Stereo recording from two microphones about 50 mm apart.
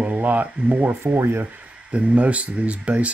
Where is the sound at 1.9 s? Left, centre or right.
Right.